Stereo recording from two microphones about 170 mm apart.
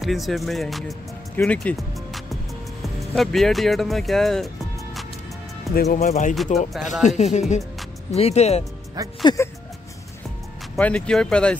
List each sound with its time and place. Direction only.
0.0 s speech: centre (ahead or behind)
1.3 s music: 5° left (ahead or behind)
2.8 s speech: centre (ahead or behind)
5.9 s speech: 45° left (ahead or behind)
6.3 s speech: centre (ahead or behind)
7.2 s speech: 40° left (ahead or behind)
9.2 s speech: 20° left (ahead or behind)
10.8 s speech: 5° left (ahead or behind)